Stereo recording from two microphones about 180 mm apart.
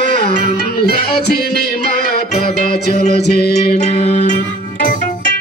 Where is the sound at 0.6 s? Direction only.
60° left (ahead or behind).